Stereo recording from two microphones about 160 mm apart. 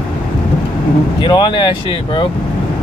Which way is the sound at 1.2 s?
30° left (ahead or behind).